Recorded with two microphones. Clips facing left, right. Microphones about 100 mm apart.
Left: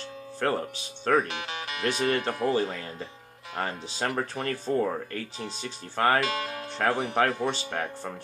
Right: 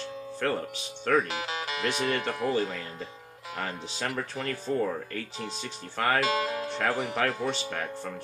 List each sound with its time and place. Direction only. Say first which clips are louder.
0.4 s speech: left 2 dB; 45° left (ahead or behind)
1.5 s music: right 1 dB; 30° right (ahead or behind)
2.0 s speech: left 5 dB; 30° left (ahead or behind)
6.2 s speech: right 3 dB; 30° right (ahead or behind)
6.8 s speech: left 4 dB; 35° left (ahead or behind)